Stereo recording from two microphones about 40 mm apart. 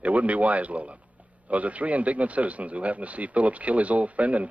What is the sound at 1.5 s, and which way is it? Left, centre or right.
Speech, right.